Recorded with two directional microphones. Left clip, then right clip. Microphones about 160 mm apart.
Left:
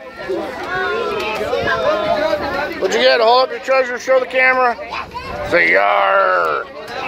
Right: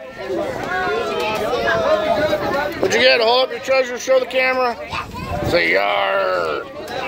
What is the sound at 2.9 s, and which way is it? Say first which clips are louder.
Speech: left 2 dB; 20° right (ahead or behind).